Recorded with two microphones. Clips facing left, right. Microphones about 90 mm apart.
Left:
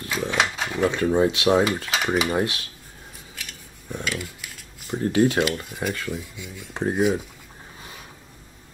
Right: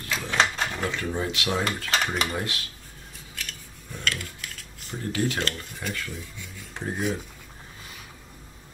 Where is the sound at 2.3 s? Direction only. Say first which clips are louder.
Left 7 dB; 25° left (ahead or behind).